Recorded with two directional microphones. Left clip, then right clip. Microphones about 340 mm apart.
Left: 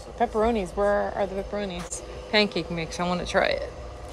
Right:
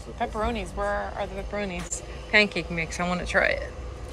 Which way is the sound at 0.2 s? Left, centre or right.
Centre.